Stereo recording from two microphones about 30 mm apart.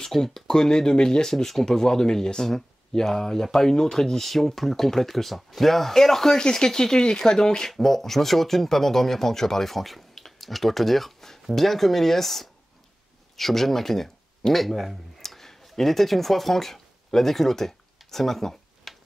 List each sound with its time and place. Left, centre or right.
0.0 s speech: centre
0.6 s speech: left
1.3 s speech: centre
4.2 s speech: centre
6.3 s speech: left
7.7 s speech: centre
15.1 s a sound: centre